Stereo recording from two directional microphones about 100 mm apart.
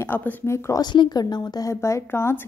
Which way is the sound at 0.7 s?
45° left (ahead or behind).